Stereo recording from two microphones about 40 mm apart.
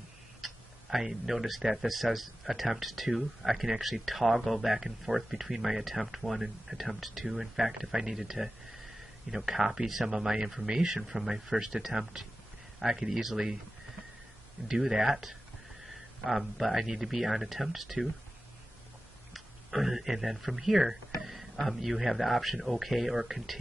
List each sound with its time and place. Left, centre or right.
0.4 s speech: centre
14.7 s speech: centre
19.3 s speech: centre